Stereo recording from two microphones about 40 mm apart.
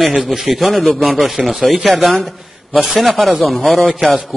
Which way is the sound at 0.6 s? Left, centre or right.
Centre.